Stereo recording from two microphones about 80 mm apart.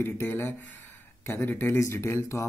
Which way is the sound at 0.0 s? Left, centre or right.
Left.